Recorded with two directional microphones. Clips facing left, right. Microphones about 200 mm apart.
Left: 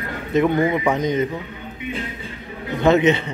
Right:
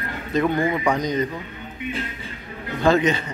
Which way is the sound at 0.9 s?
25° left (ahead or behind).